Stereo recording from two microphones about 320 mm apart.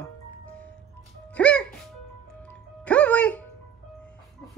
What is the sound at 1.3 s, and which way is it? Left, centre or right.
Music, centre.